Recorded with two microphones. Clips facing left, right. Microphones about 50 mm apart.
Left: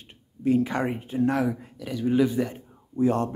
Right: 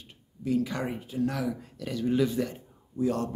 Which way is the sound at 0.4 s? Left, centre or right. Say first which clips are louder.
Left 5 dB; left.